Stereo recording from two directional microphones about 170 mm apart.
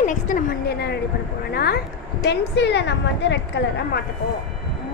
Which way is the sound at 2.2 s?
90° left.